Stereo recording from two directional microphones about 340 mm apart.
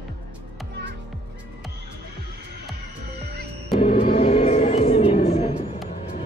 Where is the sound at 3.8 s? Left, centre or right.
Centre.